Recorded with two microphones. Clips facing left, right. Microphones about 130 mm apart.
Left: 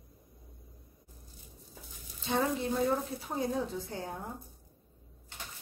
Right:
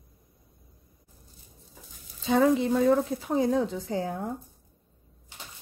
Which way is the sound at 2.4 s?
90° right.